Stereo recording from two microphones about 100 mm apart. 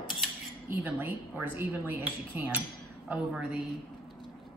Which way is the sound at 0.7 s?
20° right (ahead or behind).